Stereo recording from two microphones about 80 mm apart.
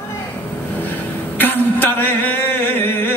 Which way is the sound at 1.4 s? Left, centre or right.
Left.